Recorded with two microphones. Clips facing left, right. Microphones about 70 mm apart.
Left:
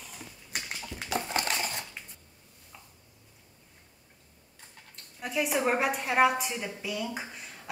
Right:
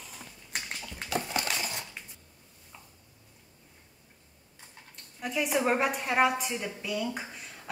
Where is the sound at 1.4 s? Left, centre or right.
Left.